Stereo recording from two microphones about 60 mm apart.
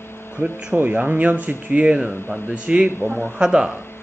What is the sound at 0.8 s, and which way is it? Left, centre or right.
A man's voice, right.